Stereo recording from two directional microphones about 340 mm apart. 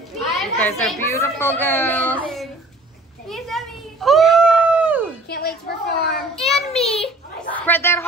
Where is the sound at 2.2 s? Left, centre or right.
Centre.